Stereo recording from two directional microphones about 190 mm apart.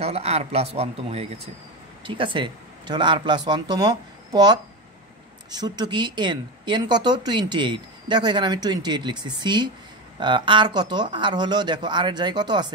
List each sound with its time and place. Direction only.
0.0 s a man's voice: 35° right (ahead or behind)